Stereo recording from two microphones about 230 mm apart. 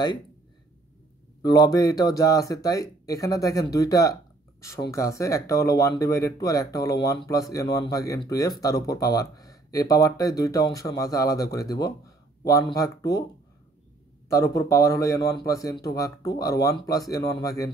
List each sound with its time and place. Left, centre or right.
1.4 s speech: centre
14.3 s speech: centre